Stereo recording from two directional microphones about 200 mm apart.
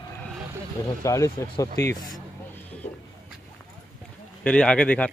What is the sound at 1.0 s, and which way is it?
Speech, 15° left (ahead or behind).